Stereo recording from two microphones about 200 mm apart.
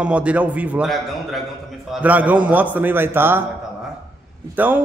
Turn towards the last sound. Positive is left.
turn(degrees=-10)  # may be behind; listen again after turning